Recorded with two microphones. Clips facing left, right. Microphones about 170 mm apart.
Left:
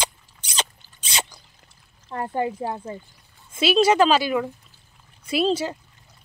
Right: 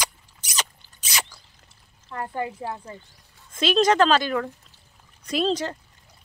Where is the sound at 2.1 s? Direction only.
25° left (ahead or behind).